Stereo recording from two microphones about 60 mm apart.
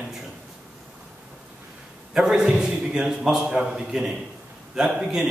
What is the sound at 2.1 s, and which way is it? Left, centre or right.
A man's voice, centre.